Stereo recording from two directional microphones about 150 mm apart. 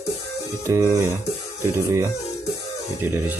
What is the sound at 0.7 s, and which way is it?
Speech, 25° right (ahead or behind).